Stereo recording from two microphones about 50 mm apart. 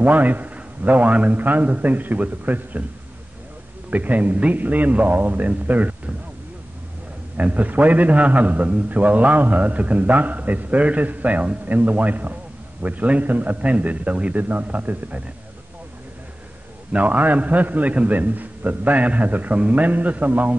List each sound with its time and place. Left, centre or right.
0.0 s a man's voice: right
3.9 s a man's voice: right
7.3 s a man's voice: right
16.9 s a man's voice: right